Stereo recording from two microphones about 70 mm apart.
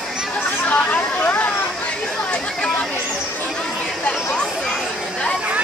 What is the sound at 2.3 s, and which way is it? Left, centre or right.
Chatter, centre.